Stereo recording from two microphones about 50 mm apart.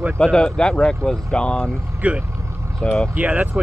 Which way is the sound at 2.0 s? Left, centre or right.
Right.